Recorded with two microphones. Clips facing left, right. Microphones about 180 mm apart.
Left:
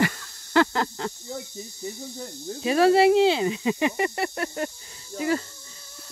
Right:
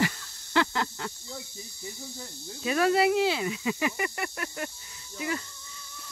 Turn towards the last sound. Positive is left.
turn(degrees=40)  # may be behind; listen again after turning